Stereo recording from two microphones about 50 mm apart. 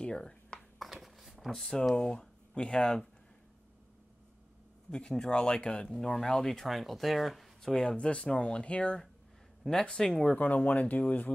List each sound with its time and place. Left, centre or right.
0.0 s a sound: centre
0.8 s a sound: centre
1.5 s speech: centre
4.9 s speech: centre
5.9 s speech: centre
7.7 s speech: centre
10.3 s speech: left